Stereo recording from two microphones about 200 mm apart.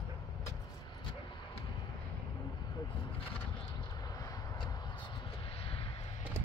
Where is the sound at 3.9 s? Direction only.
15° left (ahead or behind).